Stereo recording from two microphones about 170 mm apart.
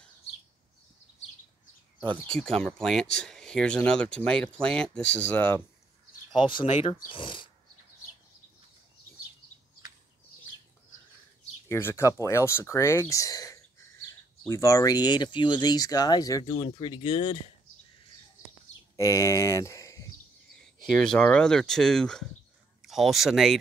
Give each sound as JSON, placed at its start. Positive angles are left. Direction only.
{"t": 2.1, "sound": "speech", "side_deg": 5}
{"t": 6.6, "sound": "speech", "side_deg": 35}
{"t": 11.7, "sound": "speech", "side_deg": 15}
{"t": 18.9, "sound": "speech", "side_deg": 20}
{"t": 21.0, "sound": "speech", "side_deg": 5}